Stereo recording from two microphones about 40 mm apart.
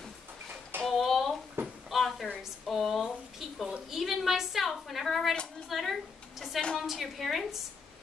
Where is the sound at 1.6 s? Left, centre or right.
Right.